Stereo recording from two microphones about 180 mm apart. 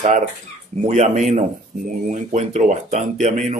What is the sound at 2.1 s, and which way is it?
Speech, 40° right (ahead or behind).